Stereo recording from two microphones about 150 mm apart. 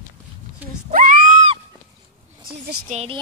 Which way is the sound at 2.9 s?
45° right (ahead or behind).